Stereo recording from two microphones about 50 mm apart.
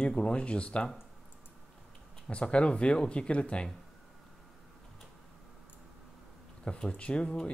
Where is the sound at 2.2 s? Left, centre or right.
Left.